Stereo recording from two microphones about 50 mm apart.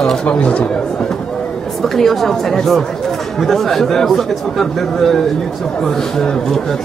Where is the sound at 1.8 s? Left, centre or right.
Centre.